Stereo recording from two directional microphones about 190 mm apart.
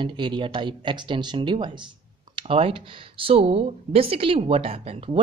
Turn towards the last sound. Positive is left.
turn(degrees=-30)  # may be behind; listen again after turning